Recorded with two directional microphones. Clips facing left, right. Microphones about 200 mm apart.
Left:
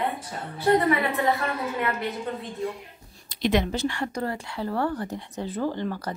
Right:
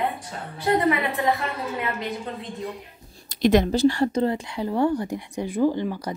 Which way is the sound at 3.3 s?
45° right (ahead or behind).